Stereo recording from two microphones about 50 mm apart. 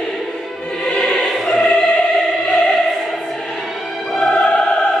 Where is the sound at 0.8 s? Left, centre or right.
Centre.